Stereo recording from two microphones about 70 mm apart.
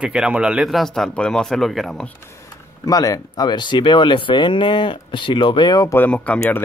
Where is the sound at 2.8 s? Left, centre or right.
Left.